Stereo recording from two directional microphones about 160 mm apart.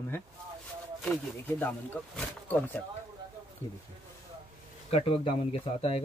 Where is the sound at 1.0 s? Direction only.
10° left (ahead or behind).